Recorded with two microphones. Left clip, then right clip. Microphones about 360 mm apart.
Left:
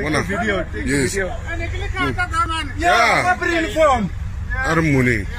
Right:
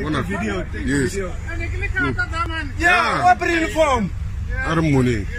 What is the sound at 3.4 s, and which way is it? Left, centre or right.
A man's voice, centre.